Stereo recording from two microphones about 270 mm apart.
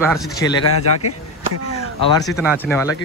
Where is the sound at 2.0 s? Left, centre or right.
Centre.